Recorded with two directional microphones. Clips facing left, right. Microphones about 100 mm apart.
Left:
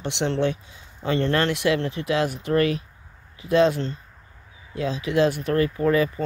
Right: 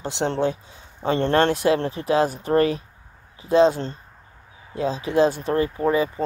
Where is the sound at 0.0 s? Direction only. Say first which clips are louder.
Right 1 dB; 35° right (ahead or behind).